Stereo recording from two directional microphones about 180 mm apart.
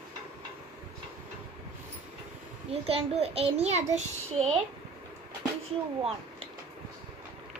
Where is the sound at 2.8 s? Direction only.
35° right (ahead or behind).